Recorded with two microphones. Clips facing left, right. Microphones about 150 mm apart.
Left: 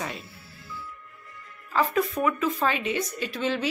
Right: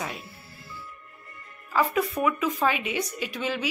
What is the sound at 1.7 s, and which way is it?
A woman's voice, 10° right (ahead or behind).